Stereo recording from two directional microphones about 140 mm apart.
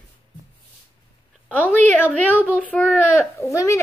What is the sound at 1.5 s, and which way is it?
A woman's voice, 15° left (ahead or behind).